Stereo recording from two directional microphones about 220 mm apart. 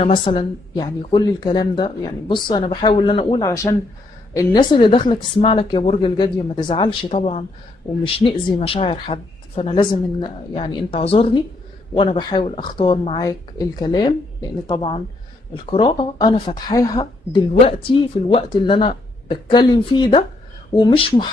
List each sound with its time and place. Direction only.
0.0 s speech: 25° left (ahead or behind)